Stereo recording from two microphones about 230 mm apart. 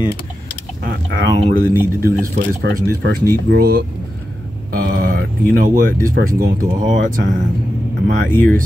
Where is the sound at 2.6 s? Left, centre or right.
Right.